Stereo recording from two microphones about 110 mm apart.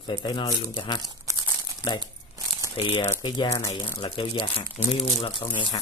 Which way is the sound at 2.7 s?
50° left (ahead or behind).